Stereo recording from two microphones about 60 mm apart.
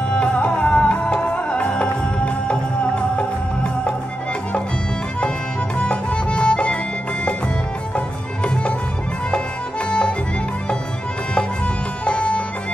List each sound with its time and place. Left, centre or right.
0.1 s music: centre
5.8 s music: centre
9.8 s music: centre
11.3 s music: centre